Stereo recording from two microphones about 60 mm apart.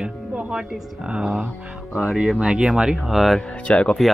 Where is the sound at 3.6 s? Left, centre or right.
Centre.